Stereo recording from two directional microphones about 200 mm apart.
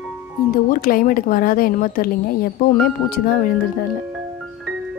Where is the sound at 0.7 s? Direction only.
45° left (ahead or behind).